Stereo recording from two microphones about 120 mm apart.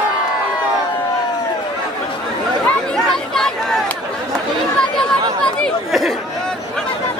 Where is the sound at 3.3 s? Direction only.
5° left (ahead or behind).